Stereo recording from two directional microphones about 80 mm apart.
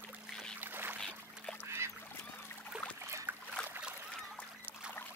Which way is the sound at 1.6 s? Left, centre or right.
Right.